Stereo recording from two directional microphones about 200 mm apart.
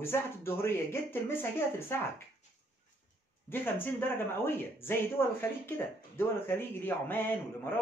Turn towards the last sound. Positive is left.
turn(degrees=10)  # may be behind; listen again after turning